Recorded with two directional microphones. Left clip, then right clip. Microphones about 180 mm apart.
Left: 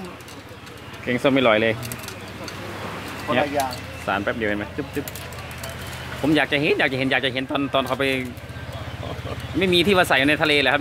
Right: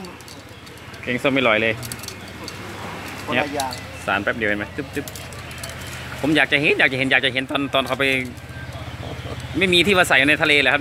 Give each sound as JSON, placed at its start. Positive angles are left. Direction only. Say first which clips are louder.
{"t": 1.0, "sound": "speech", "louder": "even", "side_deg": 15}
{"t": 3.3, "sound": "speech", "louder": "left 1 dB", "side_deg": 15}
{"t": 4.0, "sound": "speech", "louder": "right 2 dB", "side_deg": 0}
{"t": 6.2, "sound": "speech", "louder": "right 3 dB", "side_deg": 0}
{"t": 9.6, "sound": "speech", "louder": "right 2 dB", "side_deg": 5}